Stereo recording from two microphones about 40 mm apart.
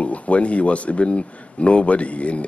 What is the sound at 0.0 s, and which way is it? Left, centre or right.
Speech, left.